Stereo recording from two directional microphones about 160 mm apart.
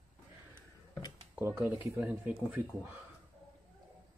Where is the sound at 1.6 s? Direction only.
10° right (ahead or behind).